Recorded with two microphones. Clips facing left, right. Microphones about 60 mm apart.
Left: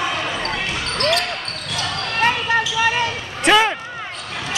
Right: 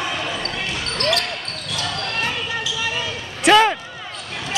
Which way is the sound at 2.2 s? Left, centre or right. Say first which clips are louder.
Left 7 dB; left.